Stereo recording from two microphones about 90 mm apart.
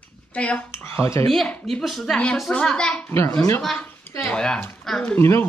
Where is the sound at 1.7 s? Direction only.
Centre (ahead or behind).